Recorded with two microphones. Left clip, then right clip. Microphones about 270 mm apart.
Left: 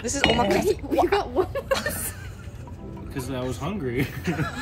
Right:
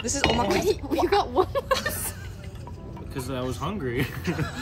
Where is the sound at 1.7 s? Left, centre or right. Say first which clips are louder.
Even; centre.